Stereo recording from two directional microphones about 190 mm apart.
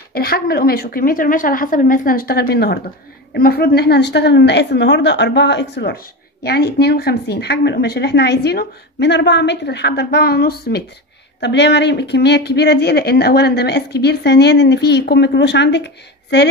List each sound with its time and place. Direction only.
0.1 s a woman's voice: 55° left (ahead or behind)